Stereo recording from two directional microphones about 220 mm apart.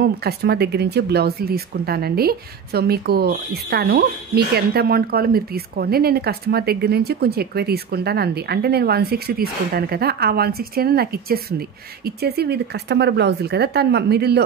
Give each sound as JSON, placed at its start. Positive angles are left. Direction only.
{"t": 0.0, "sound": "speech", "side_deg": -45}